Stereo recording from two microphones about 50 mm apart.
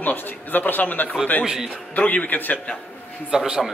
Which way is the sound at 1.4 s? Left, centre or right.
Centre.